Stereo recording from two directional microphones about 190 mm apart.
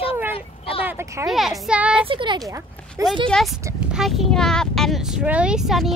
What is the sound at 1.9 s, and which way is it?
Speech, 25° right (ahead or behind).